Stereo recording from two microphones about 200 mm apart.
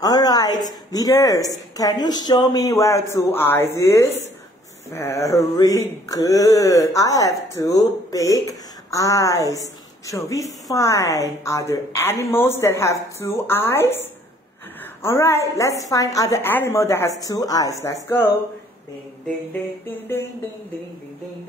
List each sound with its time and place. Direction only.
0.0 s a woman's voice: 20° left (ahead or behind)
19.9 s speech: 10° left (ahead or behind)